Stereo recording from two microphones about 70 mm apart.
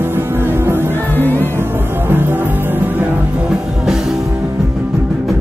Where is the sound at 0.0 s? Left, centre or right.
Right.